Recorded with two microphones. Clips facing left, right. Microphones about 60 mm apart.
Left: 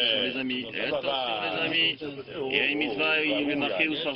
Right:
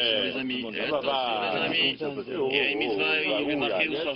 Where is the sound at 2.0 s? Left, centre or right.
Right.